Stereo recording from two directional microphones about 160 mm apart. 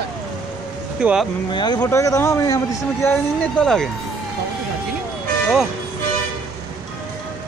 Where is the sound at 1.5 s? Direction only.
25° left (ahead or behind); by 3.8 s 5° left (ahead or behind).